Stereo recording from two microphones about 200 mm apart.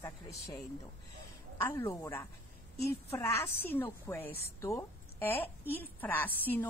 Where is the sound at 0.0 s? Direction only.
15° left (ahead or behind).